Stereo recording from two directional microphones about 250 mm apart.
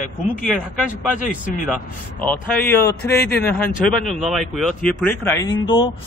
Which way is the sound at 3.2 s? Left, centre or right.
Left.